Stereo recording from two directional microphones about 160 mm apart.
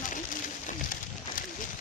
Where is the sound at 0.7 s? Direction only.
60° left (ahead or behind).